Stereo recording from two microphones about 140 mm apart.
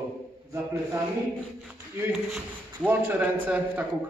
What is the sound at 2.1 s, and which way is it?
Speech, centre (ahead or behind).